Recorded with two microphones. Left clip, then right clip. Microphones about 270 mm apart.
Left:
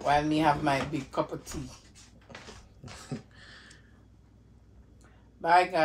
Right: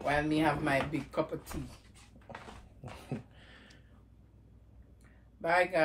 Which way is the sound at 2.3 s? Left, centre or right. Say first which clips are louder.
Even; centre.